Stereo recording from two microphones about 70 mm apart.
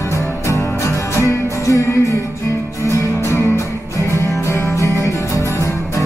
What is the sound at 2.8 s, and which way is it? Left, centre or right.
Music, left.